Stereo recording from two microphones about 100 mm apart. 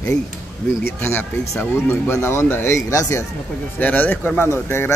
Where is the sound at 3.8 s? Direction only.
15° left (ahead or behind).